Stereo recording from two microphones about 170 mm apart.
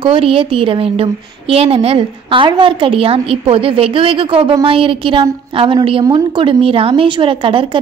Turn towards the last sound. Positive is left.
turn(degrees=-30)  # may be behind; listen again after turning